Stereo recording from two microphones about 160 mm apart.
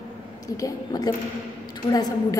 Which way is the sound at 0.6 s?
25° left (ahead or behind).